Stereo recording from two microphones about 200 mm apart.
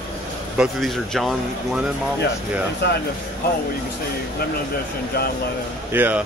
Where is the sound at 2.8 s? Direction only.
60° left (ahead or behind).